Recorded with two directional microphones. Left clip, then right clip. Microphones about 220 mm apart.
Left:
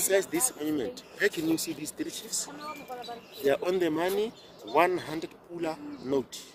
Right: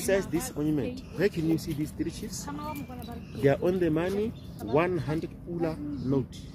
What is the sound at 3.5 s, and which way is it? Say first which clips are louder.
Speech: right 1 dB; 50° left (ahead or behind).